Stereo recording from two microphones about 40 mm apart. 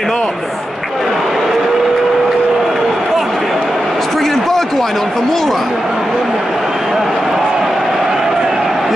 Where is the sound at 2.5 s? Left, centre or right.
Centre.